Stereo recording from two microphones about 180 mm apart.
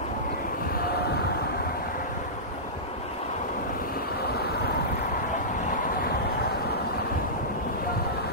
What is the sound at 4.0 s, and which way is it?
Waves, 60° left (ahead or behind).